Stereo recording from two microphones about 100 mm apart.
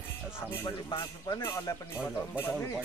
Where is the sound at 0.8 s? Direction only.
40° left (ahead or behind).